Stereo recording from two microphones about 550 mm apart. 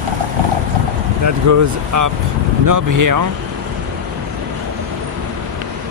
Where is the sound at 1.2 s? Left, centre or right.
Right.